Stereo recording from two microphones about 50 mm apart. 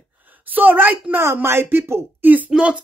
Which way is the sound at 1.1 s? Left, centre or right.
Right.